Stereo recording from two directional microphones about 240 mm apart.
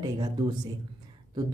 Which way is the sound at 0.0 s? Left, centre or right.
Centre.